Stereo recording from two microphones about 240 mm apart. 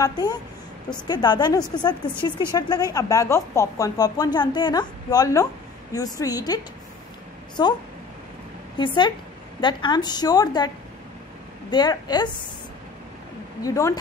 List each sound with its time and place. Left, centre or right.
0.0 s speech: centre
11.7 s speech: centre
13.6 s speech: centre